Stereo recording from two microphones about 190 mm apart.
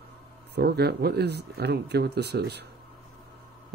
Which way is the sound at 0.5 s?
55° right (ahead or behind).